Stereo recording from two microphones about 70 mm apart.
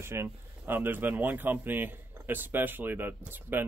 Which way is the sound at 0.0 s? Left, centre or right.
Right.